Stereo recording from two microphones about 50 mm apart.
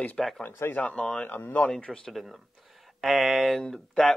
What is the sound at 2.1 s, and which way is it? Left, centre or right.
Speech, centre.